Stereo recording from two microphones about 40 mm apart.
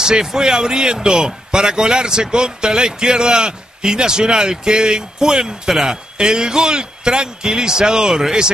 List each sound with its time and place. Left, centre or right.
0.0 s speech: centre